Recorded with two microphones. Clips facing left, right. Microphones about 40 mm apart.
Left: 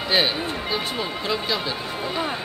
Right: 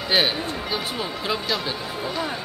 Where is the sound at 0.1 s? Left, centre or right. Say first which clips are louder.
Even; centre.